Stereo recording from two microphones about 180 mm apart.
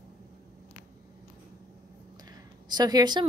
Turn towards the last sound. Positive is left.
turn(degrees=-25)  # may be behind; listen again after turning